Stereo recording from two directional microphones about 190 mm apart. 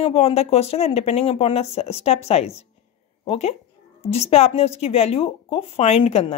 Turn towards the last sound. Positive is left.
turn(degrees=30)  # may be behind; listen again after turning